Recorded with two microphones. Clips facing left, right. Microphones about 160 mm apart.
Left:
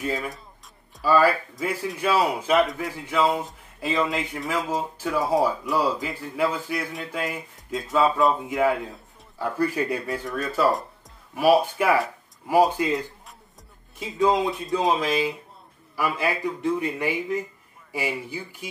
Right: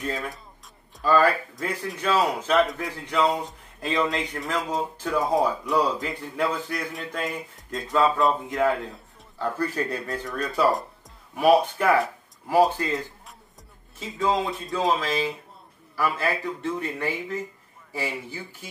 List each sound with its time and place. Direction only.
0.0 s speech: 5° left (ahead or behind)